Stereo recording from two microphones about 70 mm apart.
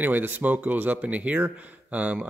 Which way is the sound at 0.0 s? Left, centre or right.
Right.